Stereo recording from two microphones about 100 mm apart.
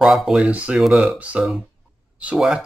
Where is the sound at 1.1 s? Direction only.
15° right (ahead or behind).